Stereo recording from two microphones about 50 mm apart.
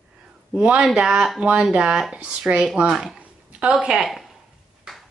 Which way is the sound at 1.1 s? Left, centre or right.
Centre.